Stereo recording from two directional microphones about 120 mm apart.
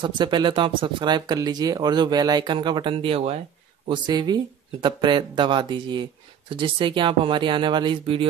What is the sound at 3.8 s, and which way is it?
Speech, 35° right (ahead or behind).